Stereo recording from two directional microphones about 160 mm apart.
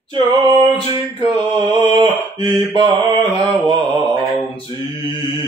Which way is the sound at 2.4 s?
30° right (ahead or behind).